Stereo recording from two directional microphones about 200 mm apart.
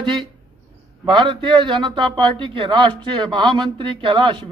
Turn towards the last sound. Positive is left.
turn(degrees=-25)  # may be behind; listen again after turning